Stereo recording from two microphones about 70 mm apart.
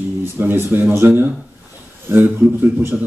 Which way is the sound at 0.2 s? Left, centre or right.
Right.